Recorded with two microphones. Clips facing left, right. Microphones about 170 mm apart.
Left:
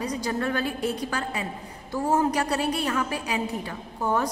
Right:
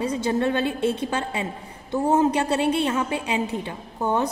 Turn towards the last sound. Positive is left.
turn(degrees=-20)  # may be behind; listen again after turning